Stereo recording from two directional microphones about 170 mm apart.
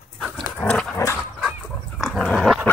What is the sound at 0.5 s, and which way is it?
Dog, 10° left (ahead or behind).